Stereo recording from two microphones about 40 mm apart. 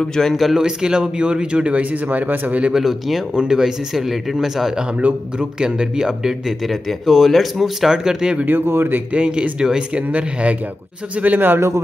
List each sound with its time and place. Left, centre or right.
0.0 s speech: centre
0.3 s speech: centre
0.6 s speech: centre
1.8 s speech: right
2.7 s speech: centre
3.3 s a man's voice: centre
4.9 s a man's voice: right; by 7.9 s centre
7.9 s speech: centre
8.5 s speech: right
9.1 s speech: right
11.3 s speech: right